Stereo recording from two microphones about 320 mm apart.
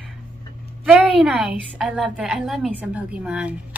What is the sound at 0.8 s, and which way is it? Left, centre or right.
A woman's voice, centre.